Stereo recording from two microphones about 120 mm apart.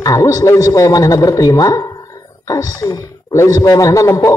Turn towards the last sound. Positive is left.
turn(degrees=25)  # may be behind; listen again after turning